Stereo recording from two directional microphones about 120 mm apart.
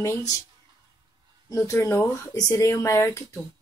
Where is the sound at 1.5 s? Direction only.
25° left (ahead or behind).